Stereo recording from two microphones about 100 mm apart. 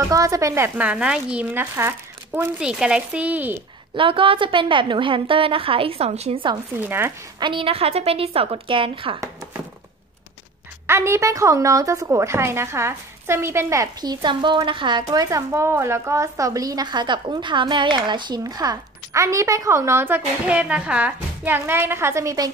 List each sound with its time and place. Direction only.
0.0 s speech: 35° right (ahead or behind)
0.7 s speech: 10° right (ahead or behind)
1.5 s speech: 25° right (ahead or behind)
2.6 s speech: 10° right (ahead or behind)
3.9 s a woman's voice: 60° right (ahead or behind); by 6.4 s 90° right
6.8 s a woman's voice: 20° right (ahead or behind)
7.3 s a woman's voice: 55° right (ahead or behind)
10.9 s a woman's voice: 25° right (ahead or behind)
14.0 s speech: 50° right (ahead or behind); by 22.5 s 35° right (ahead or behind)